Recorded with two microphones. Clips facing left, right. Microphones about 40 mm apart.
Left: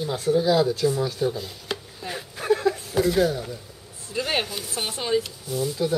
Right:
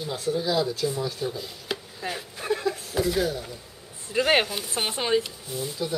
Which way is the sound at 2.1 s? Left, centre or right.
Centre.